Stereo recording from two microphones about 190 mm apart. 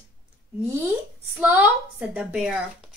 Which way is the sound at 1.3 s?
10° right (ahead or behind).